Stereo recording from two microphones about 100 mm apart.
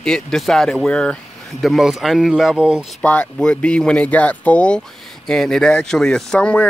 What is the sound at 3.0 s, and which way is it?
Speech, 10° left (ahead or behind).